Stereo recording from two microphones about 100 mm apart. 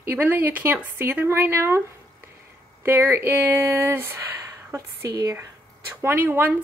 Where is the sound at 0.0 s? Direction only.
20° right (ahead or behind).